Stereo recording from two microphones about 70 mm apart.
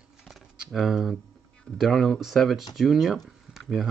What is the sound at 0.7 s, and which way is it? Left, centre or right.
Speech, centre.